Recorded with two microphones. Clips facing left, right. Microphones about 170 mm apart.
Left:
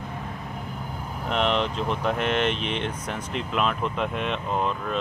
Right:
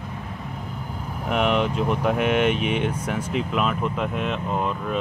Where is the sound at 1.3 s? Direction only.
10° right (ahead or behind).